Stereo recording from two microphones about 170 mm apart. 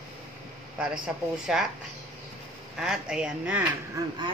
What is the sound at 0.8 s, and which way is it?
Speech, 5° right (ahead or behind).